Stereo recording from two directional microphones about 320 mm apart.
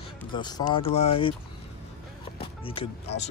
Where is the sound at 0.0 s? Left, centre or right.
Centre.